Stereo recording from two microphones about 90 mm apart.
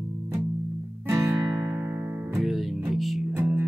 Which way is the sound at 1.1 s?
35° right (ahead or behind).